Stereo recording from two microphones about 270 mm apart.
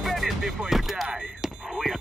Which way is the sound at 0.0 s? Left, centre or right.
Centre.